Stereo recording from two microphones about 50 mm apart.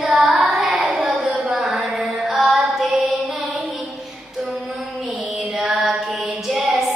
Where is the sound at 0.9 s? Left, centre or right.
Centre.